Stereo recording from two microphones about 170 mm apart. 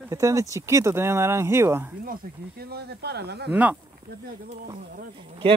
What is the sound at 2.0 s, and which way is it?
Speech, 60° right (ahead or behind).